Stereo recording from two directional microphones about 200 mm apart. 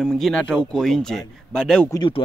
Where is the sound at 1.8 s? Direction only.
20° left (ahead or behind).